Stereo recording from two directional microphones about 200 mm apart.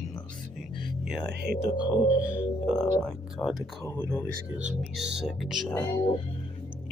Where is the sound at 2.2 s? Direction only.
5° right (ahead or behind).